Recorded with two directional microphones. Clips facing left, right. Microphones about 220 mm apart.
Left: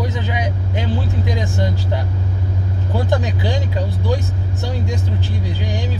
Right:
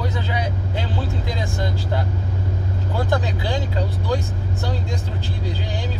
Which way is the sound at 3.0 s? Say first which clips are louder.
Left 3 dB; 15° left (ahead or behind).